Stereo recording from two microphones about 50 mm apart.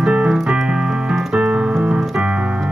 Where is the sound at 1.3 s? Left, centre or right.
Right.